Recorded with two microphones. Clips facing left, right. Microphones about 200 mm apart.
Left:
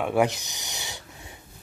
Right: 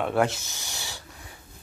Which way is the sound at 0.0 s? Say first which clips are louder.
Left 1 dB; 15° left (ahead or behind).